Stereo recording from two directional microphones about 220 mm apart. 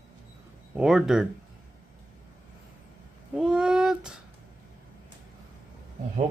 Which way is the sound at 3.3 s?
5° right (ahead or behind).